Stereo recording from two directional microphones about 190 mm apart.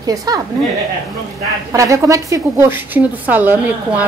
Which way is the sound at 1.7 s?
15° right (ahead or behind).